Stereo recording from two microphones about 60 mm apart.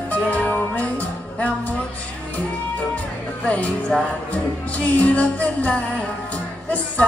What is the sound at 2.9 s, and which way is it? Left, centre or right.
Music, left.